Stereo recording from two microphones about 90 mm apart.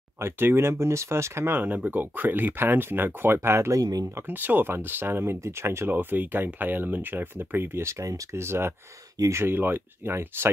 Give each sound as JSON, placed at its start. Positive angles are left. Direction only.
{"t": 0.2, "sound": "speech", "side_deg": -25}
{"t": 4.3, "sound": "speech", "side_deg": -20}